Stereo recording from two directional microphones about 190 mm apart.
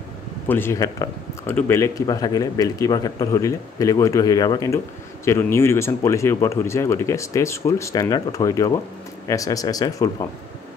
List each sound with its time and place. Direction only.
0.5 s speech: 10° left (ahead or behind)